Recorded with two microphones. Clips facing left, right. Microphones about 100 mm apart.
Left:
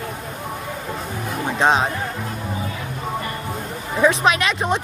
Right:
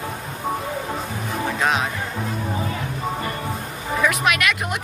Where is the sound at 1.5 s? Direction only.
30° left (ahead or behind).